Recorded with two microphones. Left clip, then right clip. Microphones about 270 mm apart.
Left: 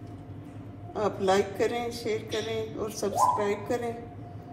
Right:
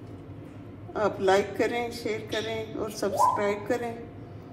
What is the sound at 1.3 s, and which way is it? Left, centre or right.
A woman's voice, right.